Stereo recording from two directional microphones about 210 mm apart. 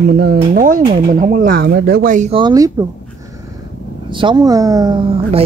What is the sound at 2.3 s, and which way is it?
Speech, 20° right (ahead or behind).